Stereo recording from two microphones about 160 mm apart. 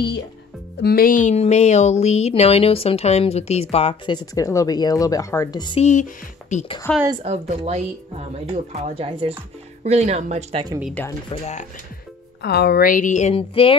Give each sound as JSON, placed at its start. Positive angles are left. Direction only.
{"t": 0.8, "sound": "speech", "side_deg": 65}
{"t": 5.8, "sound": "a woman's voice", "side_deg": 45}
{"t": 6.9, "sound": "speech", "side_deg": 5}
{"t": 7.2, "sound": "speech", "side_deg": -45}
{"t": 11.0, "sound": "speech", "side_deg": 10}
{"t": 12.4, "sound": "a woman's voice", "side_deg": 90}